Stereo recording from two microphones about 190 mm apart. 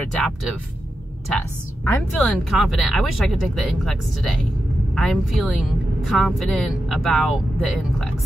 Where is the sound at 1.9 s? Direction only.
5° left (ahead or behind).